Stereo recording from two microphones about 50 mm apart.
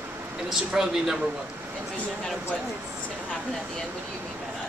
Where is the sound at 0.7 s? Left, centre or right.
Centre.